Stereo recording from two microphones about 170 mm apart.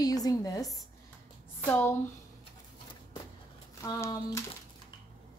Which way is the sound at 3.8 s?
15° left (ahead or behind).